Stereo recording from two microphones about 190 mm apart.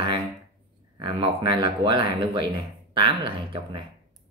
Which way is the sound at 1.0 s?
25° right (ahead or behind).